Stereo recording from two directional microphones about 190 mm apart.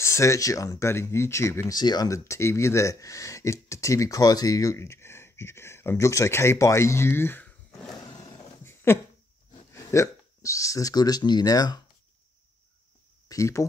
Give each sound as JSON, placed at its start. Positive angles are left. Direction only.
{"t": 0.0, "sound": "speech", "side_deg": 15}
{"t": 8.6, "sound": "a sound", "side_deg": 15}
{"t": 9.7, "sound": "speech", "side_deg": 15}
{"t": 13.3, "sound": "speech", "side_deg": 15}